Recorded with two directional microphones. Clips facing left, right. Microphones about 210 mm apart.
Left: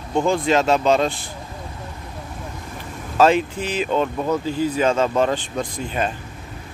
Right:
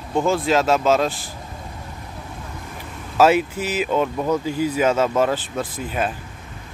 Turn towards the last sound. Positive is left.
turn(degrees=-5)  # may be behind; listen again after turning